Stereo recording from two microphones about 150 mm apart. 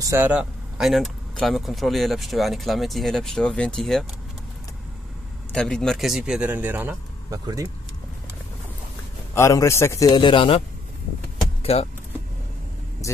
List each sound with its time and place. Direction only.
0.0 s speech: 15° right (ahead or behind); by 4.0 s 5° left (ahead or behind)
5.5 s speech: 5° left (ahead or behind); by 7.0 s 10° right (ahead or behind)
7.2 s speech: 25° right (ahead or behind)
9.3 s a man's voice: 20° left (ahead or behind); by 10.6 s 35° left (ahead or behind)
11.6 s speech: 40° left (ahead or behind)